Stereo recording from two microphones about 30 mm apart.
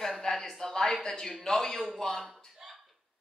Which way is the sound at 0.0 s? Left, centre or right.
Centre.